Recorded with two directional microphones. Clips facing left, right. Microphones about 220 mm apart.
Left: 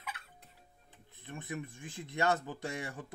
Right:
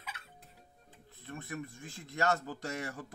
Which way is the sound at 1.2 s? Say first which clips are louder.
Even; 15° left (ahead or behind).